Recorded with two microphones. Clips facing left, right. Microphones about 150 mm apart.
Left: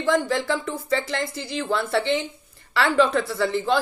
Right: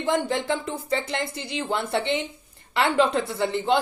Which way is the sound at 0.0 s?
20° right (ahead or behind).